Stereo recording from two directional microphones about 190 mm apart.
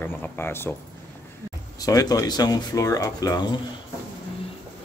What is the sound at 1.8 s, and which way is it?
Speech, 20° left (ahead or behind).